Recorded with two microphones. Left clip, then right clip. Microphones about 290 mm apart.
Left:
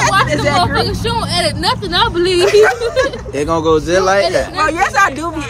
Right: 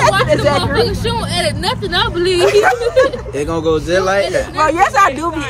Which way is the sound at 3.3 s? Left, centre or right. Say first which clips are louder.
Left 5 dB; left.